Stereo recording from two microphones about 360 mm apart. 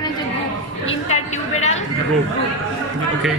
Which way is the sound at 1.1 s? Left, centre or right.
Centre.